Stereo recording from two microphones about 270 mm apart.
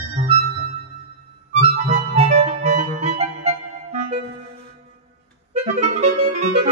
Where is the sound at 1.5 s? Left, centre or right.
Right.